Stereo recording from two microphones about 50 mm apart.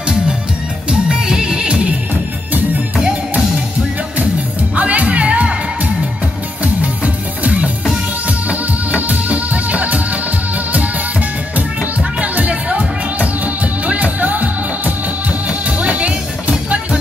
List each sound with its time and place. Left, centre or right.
1.0 s music: centre
3.0 s music: right
4.7 s music: right
7.4 s music: right
9.1 s music: right
12.2 s music: right
15.8 s music: right